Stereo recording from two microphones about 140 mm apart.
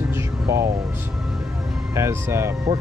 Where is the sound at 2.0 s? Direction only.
20° right (ahead or behind).